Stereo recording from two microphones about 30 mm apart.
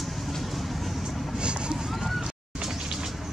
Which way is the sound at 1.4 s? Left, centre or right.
Right.